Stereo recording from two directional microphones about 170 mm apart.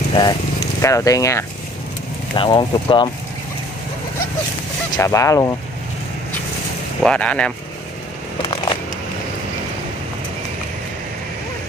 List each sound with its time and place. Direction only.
0.1 s speech: 25° left (ahead or behind)
2.3 s speech: 30° left (ahead or behind)
4.9 s speech: 20° left (ahead or behind)
7.0 s speech: 5° left (ahead or behind)